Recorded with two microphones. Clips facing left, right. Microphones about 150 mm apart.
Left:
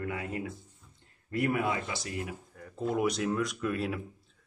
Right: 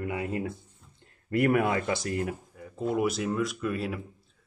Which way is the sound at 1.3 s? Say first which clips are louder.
Right 5 dB; 65° right (ahead or behind).